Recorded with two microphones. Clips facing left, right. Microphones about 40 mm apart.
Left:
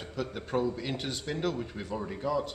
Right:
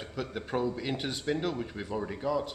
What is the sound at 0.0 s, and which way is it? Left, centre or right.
A man's voice, centre.